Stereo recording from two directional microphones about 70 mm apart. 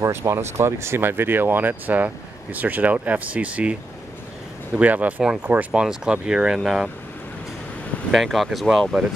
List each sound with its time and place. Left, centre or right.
0.0 s speech: right; by 3.7 s centre
4.7 s speech: right
5.7 s speech: centre
8.1 s speech: centre